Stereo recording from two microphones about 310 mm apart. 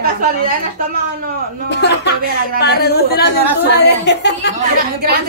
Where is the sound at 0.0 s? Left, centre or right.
Right.